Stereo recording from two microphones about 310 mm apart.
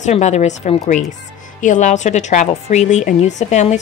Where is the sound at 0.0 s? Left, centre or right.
Left.